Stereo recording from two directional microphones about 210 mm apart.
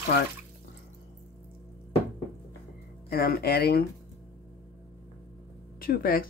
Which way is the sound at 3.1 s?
45° left (ahead or behind).